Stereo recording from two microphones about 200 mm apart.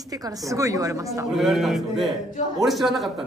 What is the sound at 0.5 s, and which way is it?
Speech, 15° right (ahead or behind).